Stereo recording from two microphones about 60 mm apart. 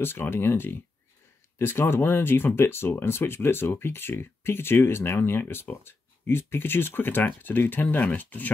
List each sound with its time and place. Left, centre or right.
0.0 s speech: left